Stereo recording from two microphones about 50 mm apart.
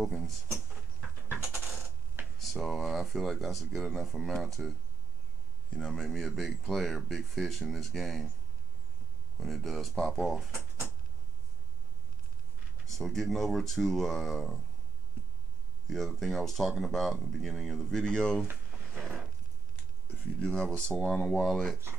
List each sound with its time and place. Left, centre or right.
0.0 s speech: centre
2.3 s speech: centre
5.7 s speech: centre
9.4 s speech: centre
12.8 s speech: centre
15.9 s speech: centre
18.0 s speech: centre
20.3 s speech: centre